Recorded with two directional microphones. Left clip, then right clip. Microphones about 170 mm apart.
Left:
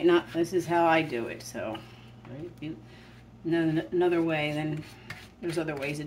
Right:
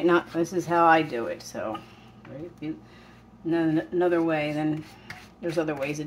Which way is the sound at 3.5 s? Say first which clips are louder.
Right 2 dB; 15° right (ahead or behind).